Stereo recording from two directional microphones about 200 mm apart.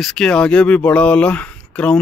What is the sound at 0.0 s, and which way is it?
Speech, 5° left (ahead or behind).